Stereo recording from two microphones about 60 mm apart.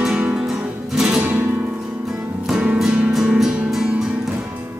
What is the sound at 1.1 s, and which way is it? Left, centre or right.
Music, right.